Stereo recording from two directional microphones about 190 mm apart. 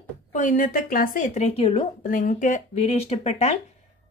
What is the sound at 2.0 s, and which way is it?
Speech, 45° left (ahead or behind).